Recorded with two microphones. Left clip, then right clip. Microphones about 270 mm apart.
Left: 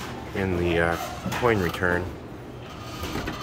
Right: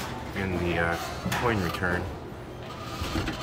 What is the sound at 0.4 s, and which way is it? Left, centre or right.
Speech, left.